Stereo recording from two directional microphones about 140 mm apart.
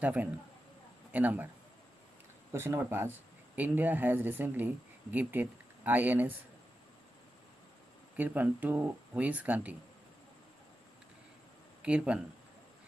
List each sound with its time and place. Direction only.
0.0 s speech: 10° right (ahead or behind)
2.5 s speech: 20° right (ahead or behind)
8.2 s speech: 10° right (ahead or behind)
11.8 s speech: 5° right (ahead or behind)